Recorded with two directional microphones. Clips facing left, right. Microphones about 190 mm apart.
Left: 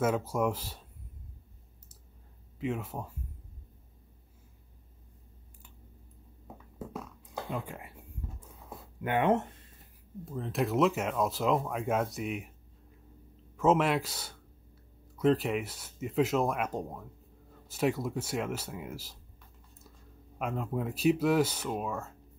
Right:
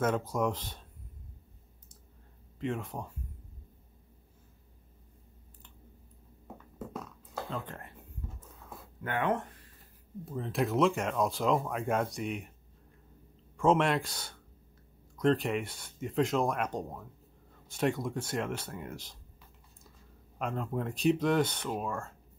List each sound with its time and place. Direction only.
0.0 s speech: 5° left (ahead or behind)
2.6 s speech: 5° left (ahead or behind)
6.4 s a sound: centre (ahead or behind)
7.3 s a sound: 15° left (ahead or behind)
10.2 s speech: centre (ahead or behind)
13.6 s speech: 5° left (ahead or behind)
20.3 s speech: 5° left (ahead or behind)